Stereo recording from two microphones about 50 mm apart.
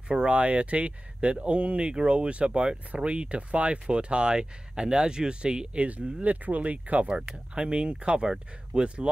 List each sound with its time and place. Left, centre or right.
0.1 s speech: right